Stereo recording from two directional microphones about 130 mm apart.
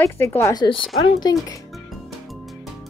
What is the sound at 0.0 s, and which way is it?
Speech, 20° left (ahead or behind).